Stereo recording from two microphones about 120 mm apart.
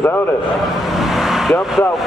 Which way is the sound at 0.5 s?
Centre (ahead or behind).